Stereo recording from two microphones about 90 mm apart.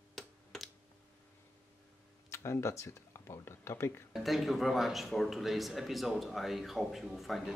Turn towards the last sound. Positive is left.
turn(degrees=0)  # may be behind; listen again after turning